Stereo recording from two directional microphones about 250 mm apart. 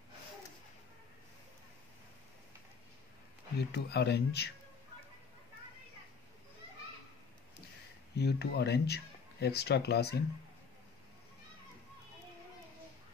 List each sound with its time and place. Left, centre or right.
3.5 s speech: left
8.2 s speech: left